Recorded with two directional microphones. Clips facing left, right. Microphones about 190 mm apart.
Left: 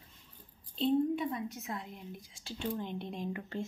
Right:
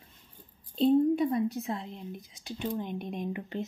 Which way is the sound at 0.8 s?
40° right (ahead or behind).